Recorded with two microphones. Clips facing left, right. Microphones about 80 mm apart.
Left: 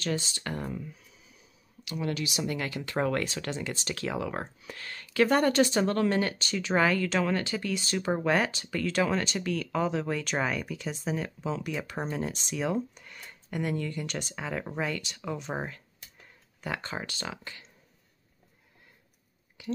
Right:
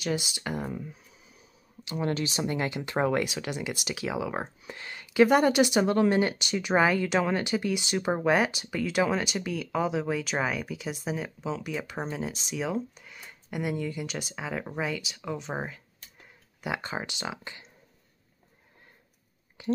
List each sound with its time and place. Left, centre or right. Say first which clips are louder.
0.0 s speech: right 1 dB; centre
1.9 s speech: right 3 dB; right; by 15.8 s centre
16.6 s speech: right 2 dB; centre
19.6 s a sound: right 5 dB; right